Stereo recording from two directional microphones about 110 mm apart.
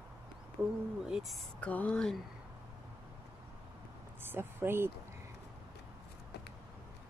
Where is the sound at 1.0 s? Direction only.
5° right (ahead or behind).